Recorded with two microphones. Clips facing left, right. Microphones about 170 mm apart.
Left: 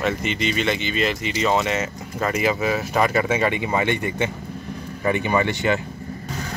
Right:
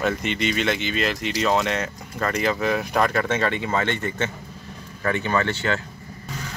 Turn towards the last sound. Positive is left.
turn(degrees=15)  # may be behind; listen again after turning